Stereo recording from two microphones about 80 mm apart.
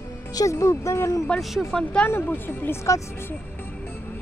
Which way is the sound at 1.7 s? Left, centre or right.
Centre.